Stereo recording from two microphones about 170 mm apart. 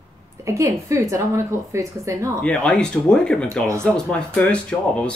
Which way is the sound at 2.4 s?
5° left (ahead or behind).